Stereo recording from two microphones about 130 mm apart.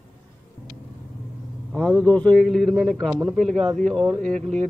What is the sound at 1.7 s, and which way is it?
A man's voice, 10° left (ahead or behind).